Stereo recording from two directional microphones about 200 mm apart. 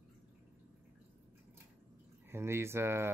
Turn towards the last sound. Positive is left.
turn(degrees=-10)  # may be behind; listen again after turning